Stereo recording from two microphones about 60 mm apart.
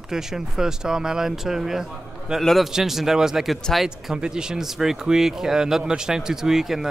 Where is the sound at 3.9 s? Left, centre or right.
Centre.